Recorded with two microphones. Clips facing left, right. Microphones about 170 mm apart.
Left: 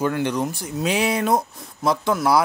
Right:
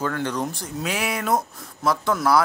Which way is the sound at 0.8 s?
20° left (ahead or behind).